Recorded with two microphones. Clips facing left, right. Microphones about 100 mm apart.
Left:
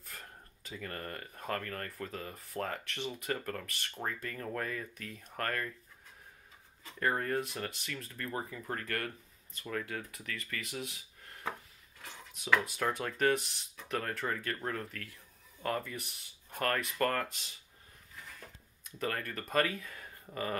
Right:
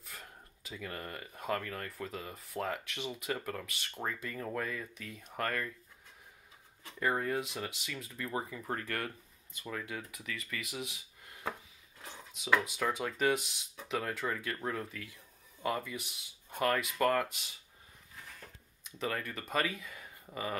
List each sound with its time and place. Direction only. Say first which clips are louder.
0.7 s speech: even; 10° right (ahead or behind)
7.0 s speech: even; 5° right (ahead or behind)
12.0 s speech: even; 5° right (ahead or behind)
18.9 s speech: even; 5° right (ahead or behind)